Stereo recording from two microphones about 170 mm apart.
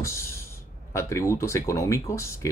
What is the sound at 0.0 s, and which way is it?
Speech, 15° left (ahead or behind).